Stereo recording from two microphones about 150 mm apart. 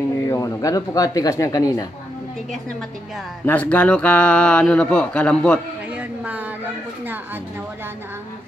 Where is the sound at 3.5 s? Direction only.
10° left (ahead or behind).